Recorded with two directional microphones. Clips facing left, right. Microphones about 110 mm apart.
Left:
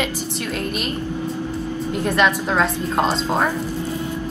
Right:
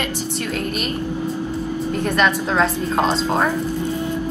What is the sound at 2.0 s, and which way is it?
A woman's voice, 5° left (ahead or behind).